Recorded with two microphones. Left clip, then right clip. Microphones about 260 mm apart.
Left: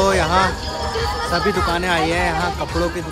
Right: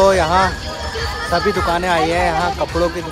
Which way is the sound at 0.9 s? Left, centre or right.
Left.